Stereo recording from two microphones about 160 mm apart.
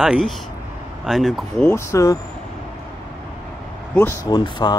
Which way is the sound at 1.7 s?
20° left (ahead or behind).